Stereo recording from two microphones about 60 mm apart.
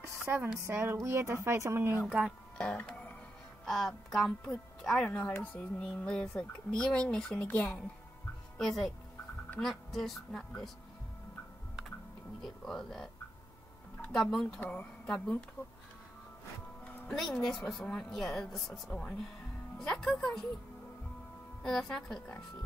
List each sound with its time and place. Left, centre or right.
0.2 s speech: right
2.5 s music: centre
3.6 s a woman's voice: centre
5.1 s speech: left
7.4 s speech: left
8.5 s a woman's voice: centre
12.4 s speech: centre
14.1 s speech: centre
14.6 s speech: left
15.0 s speech: centre
17.1 s a woman's voice: centre
18.9 s speech: centre
19.8 s music: centre
21.6 s speech: centre